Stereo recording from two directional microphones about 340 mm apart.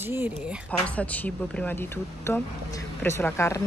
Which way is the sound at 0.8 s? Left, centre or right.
Centre.